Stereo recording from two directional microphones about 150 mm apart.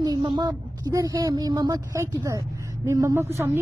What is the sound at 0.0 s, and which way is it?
A woman's voice, 30° right (ahead or behind).